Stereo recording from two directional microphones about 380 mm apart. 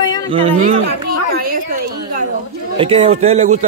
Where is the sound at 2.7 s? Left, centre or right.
Centre.